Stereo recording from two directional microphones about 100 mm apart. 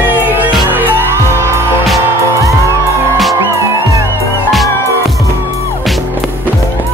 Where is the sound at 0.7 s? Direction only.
20° right (ahead or behind).